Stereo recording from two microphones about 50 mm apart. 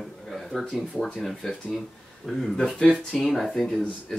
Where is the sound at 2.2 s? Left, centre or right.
Centre.